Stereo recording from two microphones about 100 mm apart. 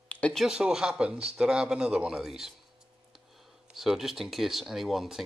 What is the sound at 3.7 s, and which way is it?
Speech, 5° right (ahead or behind).